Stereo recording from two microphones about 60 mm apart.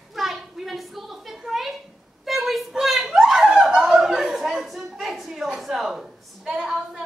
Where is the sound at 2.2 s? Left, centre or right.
Centre.